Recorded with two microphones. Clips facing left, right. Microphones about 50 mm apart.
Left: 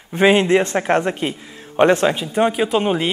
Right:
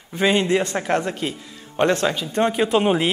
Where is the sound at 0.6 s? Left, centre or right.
Left.